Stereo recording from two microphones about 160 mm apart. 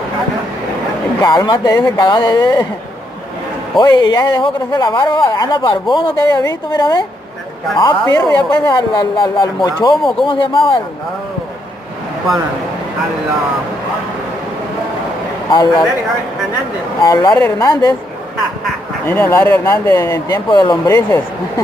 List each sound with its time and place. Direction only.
1.2 s speech: 30° left (ahead or behind)
3.8 s speech: 25° left (ahead or behind)
15.5 s speech: 30° left (ahead or behind)
17.0 s speech: 20° left (ahead or behind)
19.0 s speech: 15° left (ahead or behind)